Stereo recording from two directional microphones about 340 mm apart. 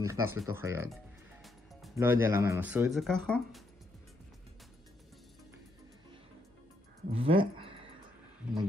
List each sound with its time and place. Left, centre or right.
0.0 s speech: centre
7.1 s speech: centre